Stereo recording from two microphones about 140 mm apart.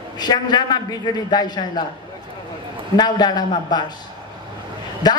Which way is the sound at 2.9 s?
30° left (ahead or behind).